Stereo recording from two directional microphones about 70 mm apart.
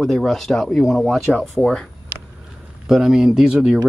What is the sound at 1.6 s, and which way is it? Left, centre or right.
Speech, centre.